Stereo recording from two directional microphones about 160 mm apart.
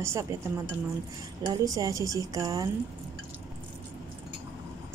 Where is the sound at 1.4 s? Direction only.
20° right (ahead or behind).